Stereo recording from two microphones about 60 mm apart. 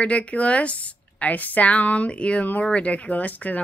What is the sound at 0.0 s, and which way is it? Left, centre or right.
Speech, left.